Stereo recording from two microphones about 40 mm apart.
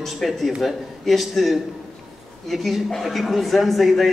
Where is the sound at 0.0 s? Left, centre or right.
Centre.